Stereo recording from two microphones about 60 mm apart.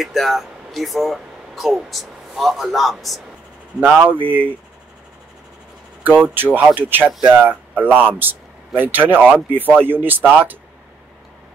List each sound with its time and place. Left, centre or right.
0.0 s speech: centre
3.8 s speech: right
6.0 s speech: right